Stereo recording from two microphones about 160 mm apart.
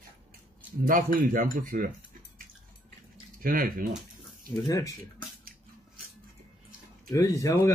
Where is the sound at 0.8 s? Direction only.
60° right (ahead or behind).